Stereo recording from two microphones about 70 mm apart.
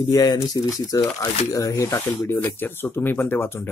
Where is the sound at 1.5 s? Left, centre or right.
Left.